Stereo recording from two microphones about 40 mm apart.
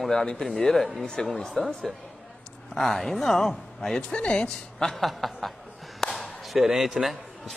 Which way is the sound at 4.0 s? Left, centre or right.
Left.